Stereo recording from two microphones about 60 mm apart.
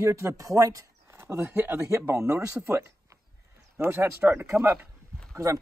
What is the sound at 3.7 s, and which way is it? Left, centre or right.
Speech, right.